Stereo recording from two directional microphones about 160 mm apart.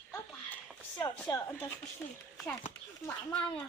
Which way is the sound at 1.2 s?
15° left (ahead or behind).